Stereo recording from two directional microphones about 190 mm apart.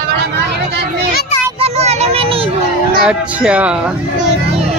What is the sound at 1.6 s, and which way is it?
Children playing, 35° right (ahead or behind).